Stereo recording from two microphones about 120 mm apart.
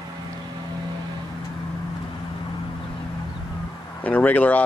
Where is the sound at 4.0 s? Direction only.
15° left (ahead or behind).